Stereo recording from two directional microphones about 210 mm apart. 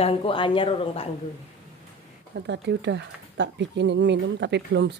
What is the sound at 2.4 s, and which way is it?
Speech, 55° right (ahead or behind).